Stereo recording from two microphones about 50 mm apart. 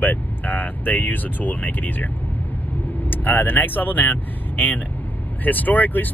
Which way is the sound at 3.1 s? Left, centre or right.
Left.